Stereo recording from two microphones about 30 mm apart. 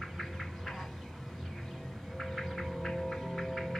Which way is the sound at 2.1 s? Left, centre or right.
Centre.